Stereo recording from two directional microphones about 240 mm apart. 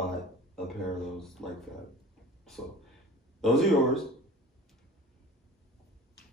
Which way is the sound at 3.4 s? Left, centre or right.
Centre.